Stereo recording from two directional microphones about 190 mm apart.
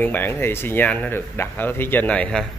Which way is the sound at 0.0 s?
10° left (ahead or behind).